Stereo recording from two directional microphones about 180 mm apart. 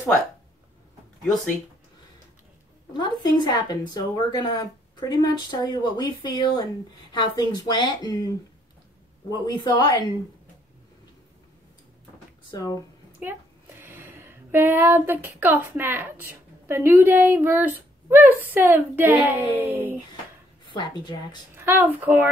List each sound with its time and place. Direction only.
2.9 s speech: 25° left (ahead or behind)
9.3 s speech: 25° left (ahead or behind)
12.4 s speech: 20° left (ahead or behind)
13.2 s a sound: 10° right (ahead or behind)
15.4 s a woman's voice: 10° right (ahead or behind)
20.7 s speech: 25° left (ahead or behind)
21.5 s a woman's voice: 10° right (ahead or behind)